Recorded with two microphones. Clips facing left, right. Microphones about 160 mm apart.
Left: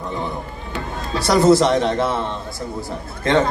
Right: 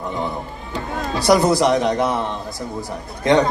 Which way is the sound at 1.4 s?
15° right (ahead or behind).